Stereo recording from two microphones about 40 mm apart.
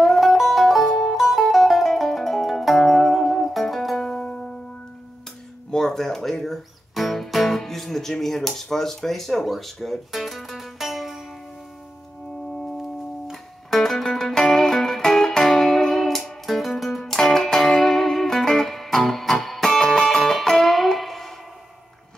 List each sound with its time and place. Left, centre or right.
0.0 s music: centre
4.1 s music: centre
5.7 s music: centre
13.3 s music: centre
17.0 s music: centre